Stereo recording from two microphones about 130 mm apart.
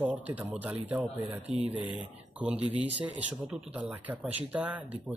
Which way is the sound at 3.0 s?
10° right (ahead or behind).